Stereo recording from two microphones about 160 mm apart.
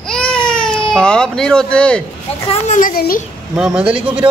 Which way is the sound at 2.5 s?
55° left (ahead or behind).